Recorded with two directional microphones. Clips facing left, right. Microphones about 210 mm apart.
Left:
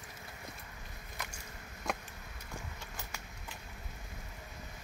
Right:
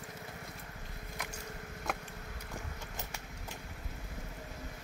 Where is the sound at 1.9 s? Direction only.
5° right (ahead or behind).